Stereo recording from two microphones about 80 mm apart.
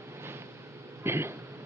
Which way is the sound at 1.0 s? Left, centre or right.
Right.